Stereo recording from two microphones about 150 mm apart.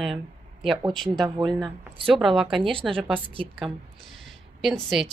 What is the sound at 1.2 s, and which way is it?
Speech, 30° right (ahead or behind).